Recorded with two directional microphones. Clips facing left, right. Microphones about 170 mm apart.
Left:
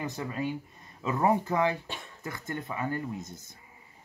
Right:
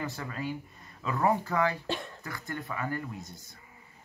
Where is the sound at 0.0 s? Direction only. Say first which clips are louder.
Left 3 dB; 20° left (ahead or behind).